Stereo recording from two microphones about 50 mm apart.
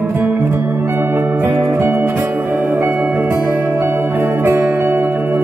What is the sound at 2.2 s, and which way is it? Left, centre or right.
Music, right.